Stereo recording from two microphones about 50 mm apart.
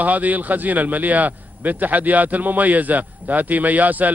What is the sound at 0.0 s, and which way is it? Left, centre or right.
A man's voice, right.